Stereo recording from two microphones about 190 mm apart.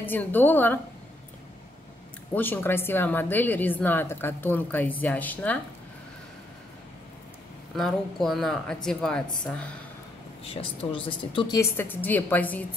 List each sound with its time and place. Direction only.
0.0 s a woman's voice: 10° left (ahead or behind)
2.3 s a woman's voice: 10° left (ahead or behind)
7.7 s a woman's voice: centre (ahead or behind)
10.4 s a woman's voice: 30° left (ahead or behind); by 12.6 s 10° left (ahead or behind)